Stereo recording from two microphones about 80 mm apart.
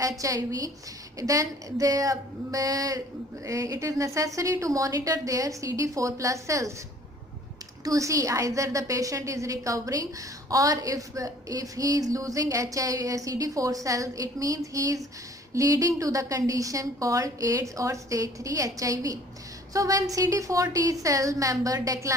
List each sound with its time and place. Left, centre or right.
0.2 s a woman's voice: right
7.8 s a woman's voice: right